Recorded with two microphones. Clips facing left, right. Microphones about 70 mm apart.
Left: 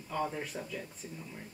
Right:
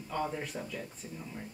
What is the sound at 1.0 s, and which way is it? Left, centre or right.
Speech, centre.